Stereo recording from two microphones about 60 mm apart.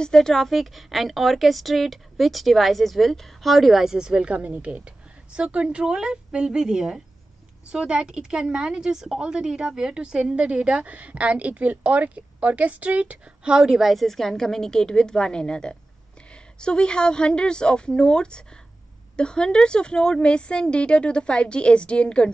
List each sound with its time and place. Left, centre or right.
0.0 s a woman's voice: centre